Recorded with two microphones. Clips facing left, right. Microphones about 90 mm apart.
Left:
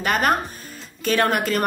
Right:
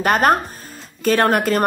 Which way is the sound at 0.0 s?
40° right (ahead or behind).